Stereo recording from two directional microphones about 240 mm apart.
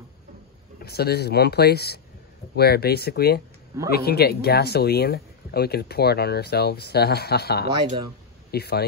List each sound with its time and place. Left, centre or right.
0.8 s speech: left